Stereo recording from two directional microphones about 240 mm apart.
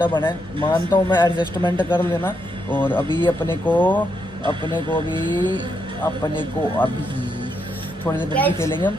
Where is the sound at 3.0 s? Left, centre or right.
Centre.